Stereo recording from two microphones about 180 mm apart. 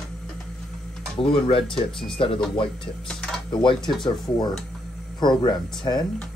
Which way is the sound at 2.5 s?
30° left (ahead or behind).